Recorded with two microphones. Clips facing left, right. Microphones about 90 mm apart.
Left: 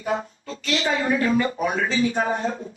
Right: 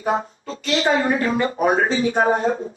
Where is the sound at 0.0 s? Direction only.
35° right (ahead or behind).